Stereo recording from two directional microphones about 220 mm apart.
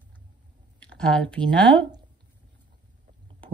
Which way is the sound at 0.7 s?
5° left (ahead or behind).